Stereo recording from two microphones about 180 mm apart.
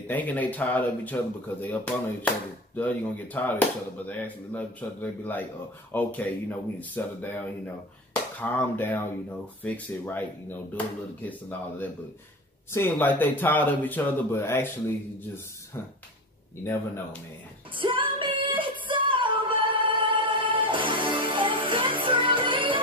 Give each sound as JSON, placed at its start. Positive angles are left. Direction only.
{"t": 0.1, "sound": "speech", "side_deg": 10}
{"t": 16.6, "sound": "speech", "side_deg": 10}
{"t": 17.7, "sound": "music", "side_deg": -30}